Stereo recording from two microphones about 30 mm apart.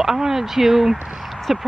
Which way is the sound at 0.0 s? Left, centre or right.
Centre.